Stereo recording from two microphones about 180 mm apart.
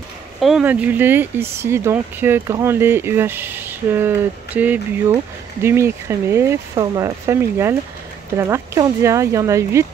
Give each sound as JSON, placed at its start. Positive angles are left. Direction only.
{"t": 0.4, "sound": "speech", "side_deg": -5}